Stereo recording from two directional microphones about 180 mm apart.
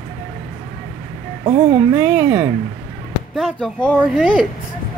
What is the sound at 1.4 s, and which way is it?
Speech, 25° right (ahead or behind).